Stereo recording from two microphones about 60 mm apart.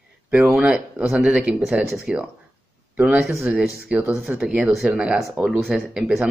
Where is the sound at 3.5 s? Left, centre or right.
Centre.